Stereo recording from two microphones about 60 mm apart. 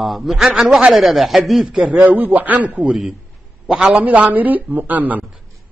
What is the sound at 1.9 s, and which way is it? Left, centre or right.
A man's voice, right.